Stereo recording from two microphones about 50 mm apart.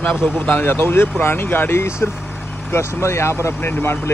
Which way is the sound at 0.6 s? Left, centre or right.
Left.